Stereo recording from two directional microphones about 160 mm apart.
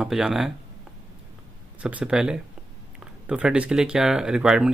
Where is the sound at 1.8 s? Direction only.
10° right (ahead or behind).